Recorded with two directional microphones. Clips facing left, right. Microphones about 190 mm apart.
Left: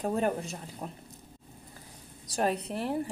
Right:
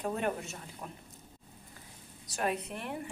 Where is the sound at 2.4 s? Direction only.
35° left (ahead or behind).